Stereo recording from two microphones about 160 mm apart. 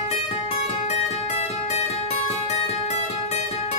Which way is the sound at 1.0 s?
40° left (ahead or behind).